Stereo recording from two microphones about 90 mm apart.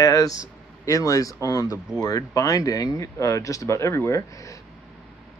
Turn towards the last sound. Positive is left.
turn(degrees=35)  # may be behind; listen again after turning